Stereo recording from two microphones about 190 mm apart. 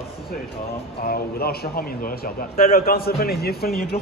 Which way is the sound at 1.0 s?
50° left (ahead or behind).